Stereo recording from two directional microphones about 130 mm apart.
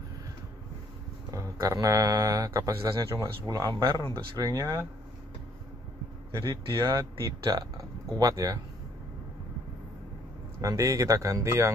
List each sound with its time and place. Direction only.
1.3 s speech: 25° right (ahead or behind)
6.3 s speech: 35° right (ahead or behind)
10.6 s speech: 25° right (ahead or behind)